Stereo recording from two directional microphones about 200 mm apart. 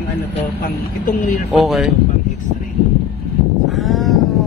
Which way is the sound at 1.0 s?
40° left (ahead or behind).